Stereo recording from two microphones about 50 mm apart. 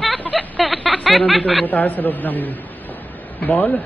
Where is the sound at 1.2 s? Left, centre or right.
Left.